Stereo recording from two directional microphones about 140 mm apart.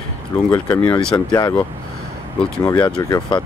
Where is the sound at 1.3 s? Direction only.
30° left (ahead or behind).